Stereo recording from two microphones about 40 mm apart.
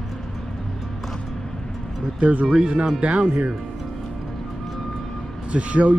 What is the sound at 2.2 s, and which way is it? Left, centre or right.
Speech, right.